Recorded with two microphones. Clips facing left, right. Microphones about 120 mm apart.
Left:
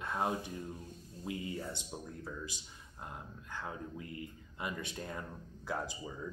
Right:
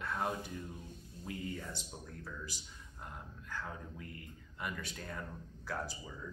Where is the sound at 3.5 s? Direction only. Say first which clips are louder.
Left 2 dB; 20° left (ahead or behind).